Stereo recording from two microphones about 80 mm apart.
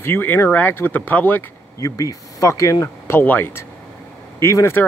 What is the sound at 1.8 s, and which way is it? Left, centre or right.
Speech, left.